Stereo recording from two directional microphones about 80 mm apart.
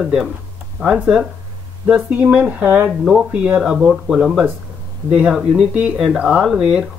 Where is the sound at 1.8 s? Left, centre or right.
Centre.